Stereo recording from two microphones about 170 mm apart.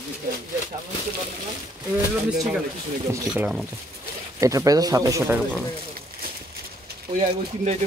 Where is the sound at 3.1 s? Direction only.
5° right (ahead or behind).